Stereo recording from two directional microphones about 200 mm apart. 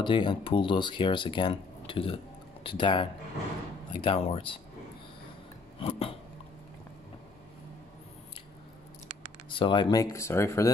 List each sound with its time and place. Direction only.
0.0 s speech: 25° left (ahead or behind)
5.8 s a sound: 25° left (ahead or behind)
9.5 s speech: 25° left (ahead or behind)